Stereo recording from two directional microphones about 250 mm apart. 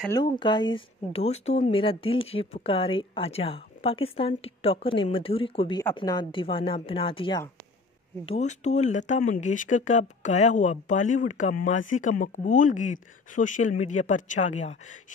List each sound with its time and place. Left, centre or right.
0.1 s speech: centre